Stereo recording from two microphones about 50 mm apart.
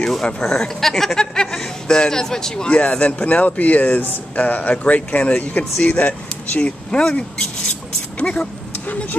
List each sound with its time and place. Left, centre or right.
0.2 s speech: centre
6.9 s speech: centre